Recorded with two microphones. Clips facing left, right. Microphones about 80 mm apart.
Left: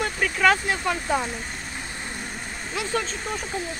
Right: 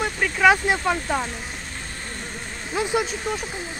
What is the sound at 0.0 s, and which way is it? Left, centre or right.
Speech, centre.